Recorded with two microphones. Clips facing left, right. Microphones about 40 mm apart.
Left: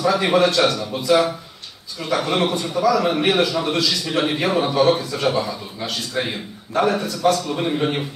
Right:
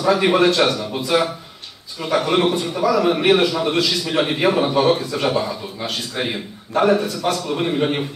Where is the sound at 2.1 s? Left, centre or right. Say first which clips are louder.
Right 3 dB; centre.